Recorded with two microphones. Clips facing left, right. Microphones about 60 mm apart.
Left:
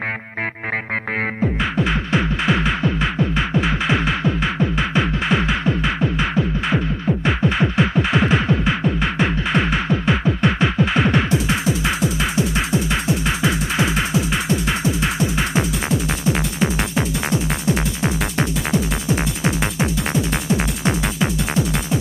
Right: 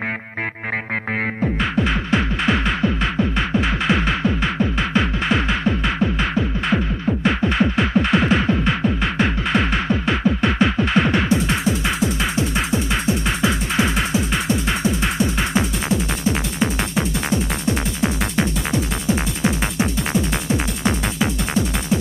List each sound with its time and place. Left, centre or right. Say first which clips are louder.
1.4 s music: right 1 dB; centre